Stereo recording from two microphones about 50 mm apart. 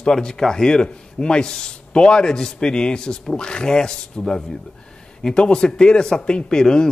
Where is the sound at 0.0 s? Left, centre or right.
Centre.